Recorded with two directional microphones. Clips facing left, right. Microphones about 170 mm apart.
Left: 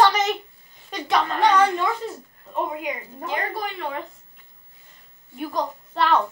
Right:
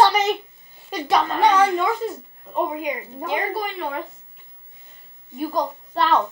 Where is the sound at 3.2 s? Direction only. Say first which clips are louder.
Right 3 dB; 10° right (ahead or behind).